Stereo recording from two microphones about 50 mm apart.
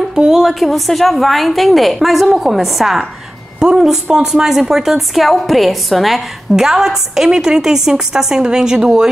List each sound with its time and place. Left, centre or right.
0.1 s a woman's voice: centre
0.4 s a woman's voice: centre